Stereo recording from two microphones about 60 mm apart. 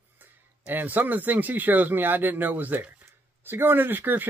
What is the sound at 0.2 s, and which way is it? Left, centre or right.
Speech, right.